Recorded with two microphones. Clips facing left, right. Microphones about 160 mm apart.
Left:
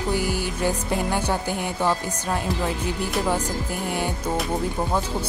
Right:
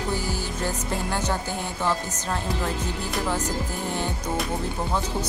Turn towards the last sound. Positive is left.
turn(degrees=10)  # may be behind; listen again after turning